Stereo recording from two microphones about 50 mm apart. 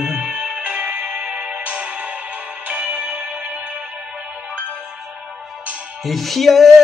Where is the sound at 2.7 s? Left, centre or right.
Right.